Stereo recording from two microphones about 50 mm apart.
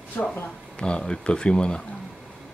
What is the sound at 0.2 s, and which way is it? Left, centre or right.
Speech, left.